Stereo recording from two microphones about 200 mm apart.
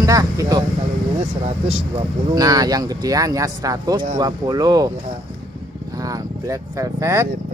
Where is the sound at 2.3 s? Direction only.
20° right (ahead or behind).